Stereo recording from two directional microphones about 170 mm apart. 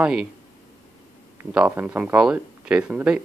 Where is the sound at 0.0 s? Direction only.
5° right (ahead or behind).